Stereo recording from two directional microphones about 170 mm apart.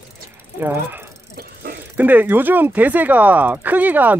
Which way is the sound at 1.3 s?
65° right (ahead or behind).